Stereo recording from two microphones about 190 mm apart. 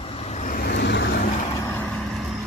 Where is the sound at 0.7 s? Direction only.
60° left (ahead or behind).